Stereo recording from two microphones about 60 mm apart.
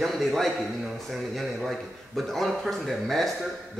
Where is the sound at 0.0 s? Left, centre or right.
Centre.